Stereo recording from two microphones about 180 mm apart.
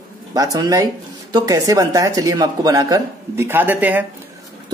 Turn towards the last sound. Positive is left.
turn(degrees=-10)  # may be behind; listen again after turning